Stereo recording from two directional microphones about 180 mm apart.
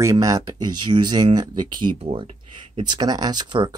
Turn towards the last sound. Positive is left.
turn(degrees=-25)  # may be behind; listen again after turning